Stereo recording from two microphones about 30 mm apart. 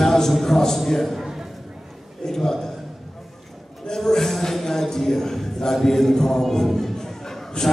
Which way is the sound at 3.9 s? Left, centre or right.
Centre.